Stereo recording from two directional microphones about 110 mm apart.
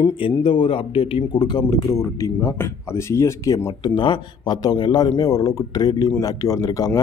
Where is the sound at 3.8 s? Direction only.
45° left (ahead or behind).